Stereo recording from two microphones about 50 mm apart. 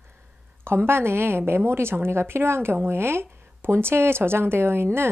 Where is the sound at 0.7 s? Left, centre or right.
Right.